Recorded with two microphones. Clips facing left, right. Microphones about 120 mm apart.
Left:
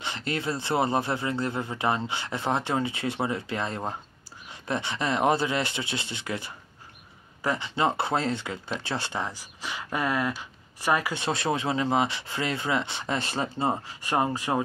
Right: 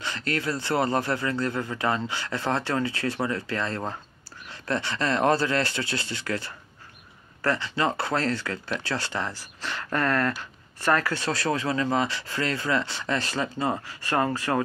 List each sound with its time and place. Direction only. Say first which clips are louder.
0.0 s speech: right 1 dB; 25° left (ahead or behind)